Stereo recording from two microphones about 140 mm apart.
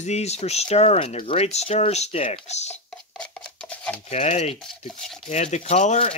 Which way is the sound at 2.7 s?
10° left (ahead or behind).